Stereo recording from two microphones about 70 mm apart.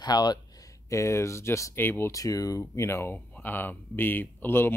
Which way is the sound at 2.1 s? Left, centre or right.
Left.